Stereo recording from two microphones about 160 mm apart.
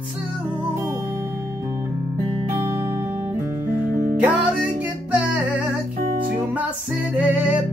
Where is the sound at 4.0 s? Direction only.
15° right (ahead or behind).